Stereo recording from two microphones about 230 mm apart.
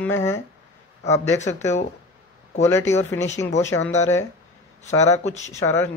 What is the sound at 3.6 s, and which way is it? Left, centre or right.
Speech, centre.